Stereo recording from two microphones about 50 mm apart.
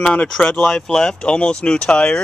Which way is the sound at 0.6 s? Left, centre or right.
Centre.